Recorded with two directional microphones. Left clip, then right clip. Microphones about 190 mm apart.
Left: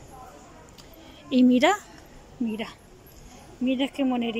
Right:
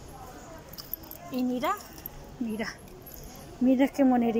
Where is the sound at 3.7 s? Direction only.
10° left (ahead or behind).